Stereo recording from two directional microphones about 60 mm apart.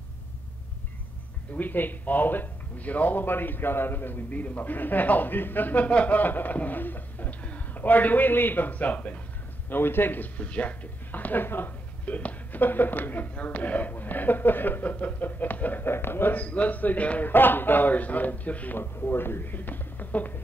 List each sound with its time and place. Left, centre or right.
1.5 s speech: left
9.7 s speech: left
16.4 s speech: left
18.8 s speech: left